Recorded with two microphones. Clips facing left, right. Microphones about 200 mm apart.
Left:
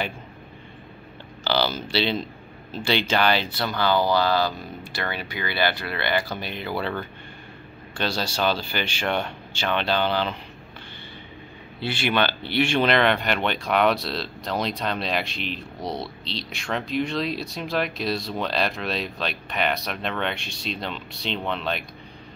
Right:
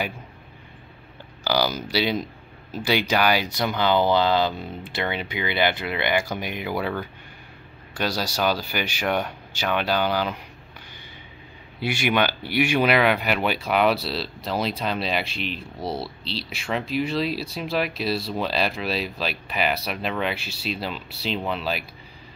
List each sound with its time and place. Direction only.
1.4 s speech: 10° right (ahead or behind)
11.8 s speech: 10° right (ahead or behind)